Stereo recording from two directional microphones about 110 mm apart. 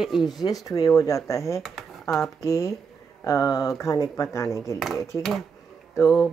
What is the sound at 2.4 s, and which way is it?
Speech, 30° left (ahead or behind).